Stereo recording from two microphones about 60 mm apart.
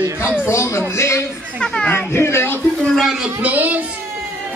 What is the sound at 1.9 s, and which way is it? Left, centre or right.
Speech, left.